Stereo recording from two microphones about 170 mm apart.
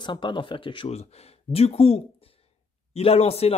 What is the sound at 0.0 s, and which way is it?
Speech, 30° left (ahead or behind).